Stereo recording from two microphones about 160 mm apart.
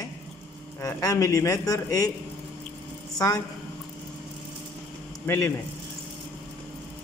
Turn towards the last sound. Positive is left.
turn(degrees=15)  # may be behind; listen again after turning